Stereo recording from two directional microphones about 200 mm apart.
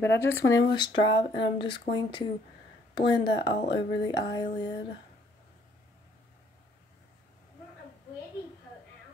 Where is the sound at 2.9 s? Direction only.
25° left (ahead or behind).